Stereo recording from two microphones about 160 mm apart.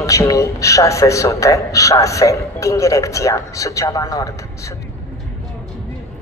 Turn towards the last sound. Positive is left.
turn(degrees=20)  # may be behind; listen again after turning